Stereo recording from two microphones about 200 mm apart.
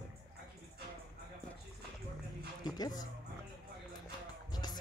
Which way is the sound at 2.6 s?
20° left (ahead or behind).